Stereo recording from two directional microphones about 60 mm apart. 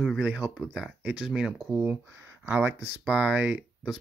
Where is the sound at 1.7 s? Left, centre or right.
Right.